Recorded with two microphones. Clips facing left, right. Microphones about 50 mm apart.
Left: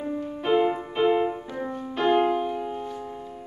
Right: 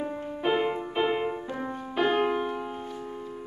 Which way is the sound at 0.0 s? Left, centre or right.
Centre.